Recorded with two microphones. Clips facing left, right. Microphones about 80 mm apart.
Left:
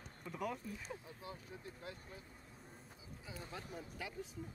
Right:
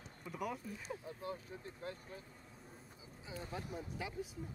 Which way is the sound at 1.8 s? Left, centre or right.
Right.